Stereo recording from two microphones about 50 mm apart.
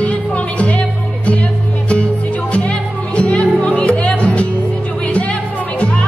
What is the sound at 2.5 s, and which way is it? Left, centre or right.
Music, left.